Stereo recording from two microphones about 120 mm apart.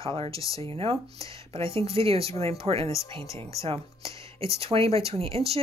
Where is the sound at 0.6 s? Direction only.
50° right (ahead or behind).